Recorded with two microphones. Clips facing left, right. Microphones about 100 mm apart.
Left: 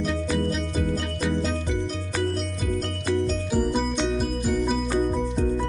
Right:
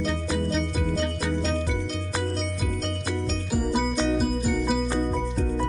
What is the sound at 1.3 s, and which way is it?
Music, 5° left (ahead or behind).